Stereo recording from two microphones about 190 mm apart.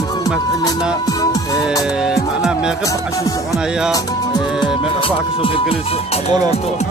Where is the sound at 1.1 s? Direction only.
20° left (ahead or behind).